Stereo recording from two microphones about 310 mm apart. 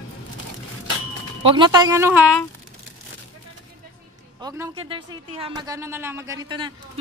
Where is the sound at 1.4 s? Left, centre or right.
Centre.